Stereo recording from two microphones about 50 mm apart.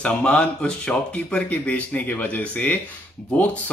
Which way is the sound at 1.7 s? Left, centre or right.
Left.